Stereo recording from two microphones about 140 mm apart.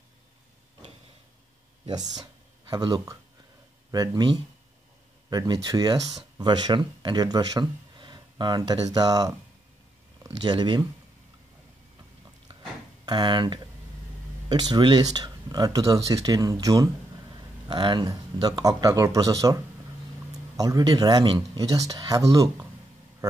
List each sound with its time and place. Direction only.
1.9 s speech: 30° right (ahead or behind)
13.0 s speech: 35° right (ahead or behind)
20.5 s speech: 25° right (ahead or behind)